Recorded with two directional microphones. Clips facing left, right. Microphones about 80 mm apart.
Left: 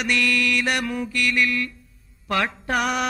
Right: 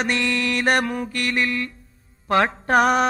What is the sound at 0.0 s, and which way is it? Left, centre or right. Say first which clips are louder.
Speech: even; right.